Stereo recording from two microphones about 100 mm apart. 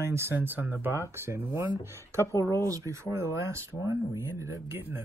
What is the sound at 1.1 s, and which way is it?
Speech, 25° right (ahead or behind).